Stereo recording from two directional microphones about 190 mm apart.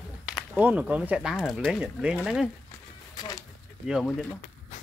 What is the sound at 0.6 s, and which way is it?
Speech, 10° right (ahead or behind).